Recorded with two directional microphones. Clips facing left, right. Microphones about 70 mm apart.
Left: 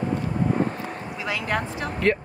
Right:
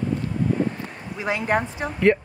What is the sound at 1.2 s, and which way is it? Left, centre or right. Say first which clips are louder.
Speech: right 4 dB; right.